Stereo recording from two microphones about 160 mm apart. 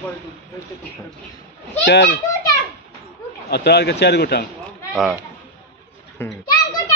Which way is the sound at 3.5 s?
90° left.